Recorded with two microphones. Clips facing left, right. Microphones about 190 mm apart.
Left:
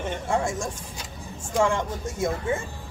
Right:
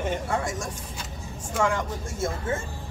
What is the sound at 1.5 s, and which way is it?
Speech, 25° left (ahead or behind).